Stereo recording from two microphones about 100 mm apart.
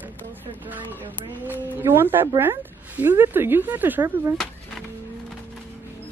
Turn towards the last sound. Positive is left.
turn(degrees=-25)  # may be behind; listen again after turning